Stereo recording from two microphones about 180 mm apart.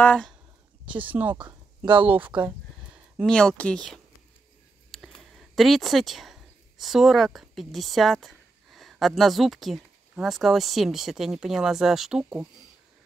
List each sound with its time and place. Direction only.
0.0 s speech: 5° left (ahead or behind)
0.8 s speech: 10° right (ahead or behind)
1.3 s speech: 25° right (ahead or behind)
2.0 s speech: 10° right (ahead or behind)
3.2 s speech: 5° left (ahead or behind)